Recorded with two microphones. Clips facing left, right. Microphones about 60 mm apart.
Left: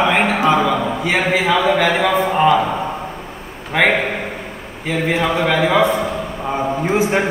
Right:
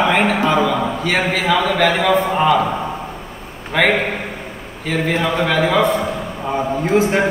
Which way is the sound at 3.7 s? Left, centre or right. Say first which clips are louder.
Even; centre.